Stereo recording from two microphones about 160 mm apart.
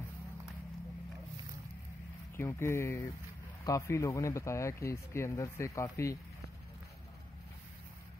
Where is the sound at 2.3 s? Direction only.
15° left (ahead or behind).